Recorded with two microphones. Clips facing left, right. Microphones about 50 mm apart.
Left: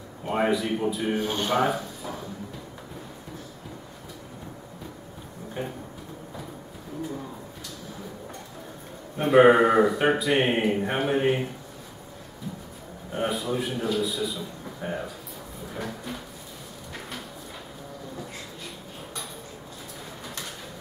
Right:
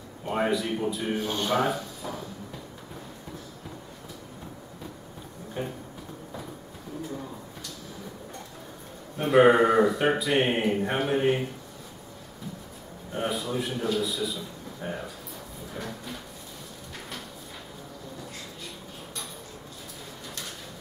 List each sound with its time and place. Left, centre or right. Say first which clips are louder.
0.2 s speech: left 2 dB; centre
5.6 s a sound: even; centre
9.1 s speech: left 2 dB; centre
13.1 s a man's voice: left 2 dB; centre
15.7 s a sound: left 3 dB; centre
20.2 s bird: left 2 dB; centre